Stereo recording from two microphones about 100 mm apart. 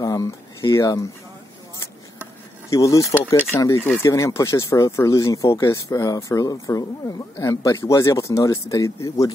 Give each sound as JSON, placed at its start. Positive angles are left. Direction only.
{"t": 0.0, "sound": "speech", "side_deg": 35}
{"t": 2.7, "sound": "speech", "side_deg": 30}
{"t": 3.5, "sound": "speech", "side_deg": 20}
{"t": 4.0, "sound": "speech", "side_deg": 30}